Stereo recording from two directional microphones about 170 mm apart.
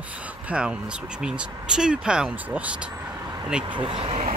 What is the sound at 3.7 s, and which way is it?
Speech, 30° right (ahead or behind).